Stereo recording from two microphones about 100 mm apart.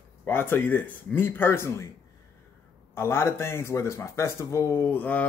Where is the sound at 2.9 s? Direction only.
25° left (ahead or behind).